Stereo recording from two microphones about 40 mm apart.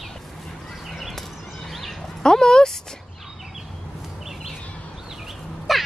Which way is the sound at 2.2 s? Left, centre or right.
Centre.